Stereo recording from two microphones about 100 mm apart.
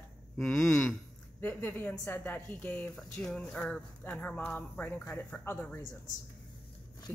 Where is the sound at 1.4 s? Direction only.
20° left (ahead or behind).